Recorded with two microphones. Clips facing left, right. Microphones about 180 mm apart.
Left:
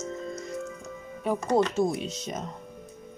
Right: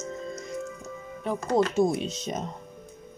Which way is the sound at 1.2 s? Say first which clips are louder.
Left 2 dB; 10° left (ahead or behind).